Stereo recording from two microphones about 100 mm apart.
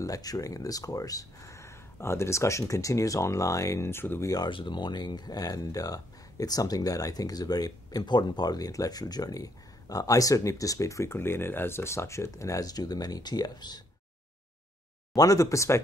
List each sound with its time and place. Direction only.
0.0 s speech: 35° left (ahead or behind)
4.5 s speech: 55° left (ahead or behind)
15.1 s speech: 35° left (ahead or behind)